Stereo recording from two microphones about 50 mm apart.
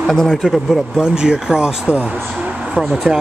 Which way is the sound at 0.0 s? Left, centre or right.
Centre.